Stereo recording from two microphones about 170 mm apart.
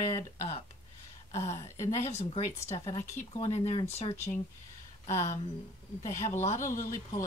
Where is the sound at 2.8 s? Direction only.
30° left (ahead or behind).